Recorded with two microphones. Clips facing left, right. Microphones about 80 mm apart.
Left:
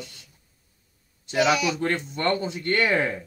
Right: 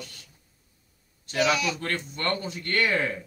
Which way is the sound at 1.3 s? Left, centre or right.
Centre.